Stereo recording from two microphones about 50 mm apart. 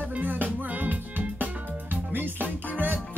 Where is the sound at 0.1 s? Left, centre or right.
Right.